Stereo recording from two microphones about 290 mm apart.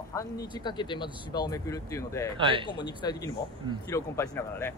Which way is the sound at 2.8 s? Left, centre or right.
Centre.